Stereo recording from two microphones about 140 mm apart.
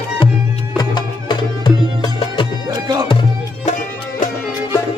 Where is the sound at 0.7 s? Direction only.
35° left (ahead or behind).